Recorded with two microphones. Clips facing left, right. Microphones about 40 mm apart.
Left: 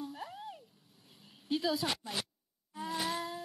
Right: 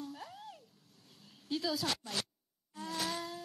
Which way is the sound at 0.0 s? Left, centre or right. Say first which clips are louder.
Left 3 dB; centre.